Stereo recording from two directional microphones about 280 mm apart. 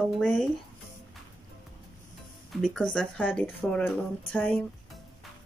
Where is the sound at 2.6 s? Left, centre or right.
Centre.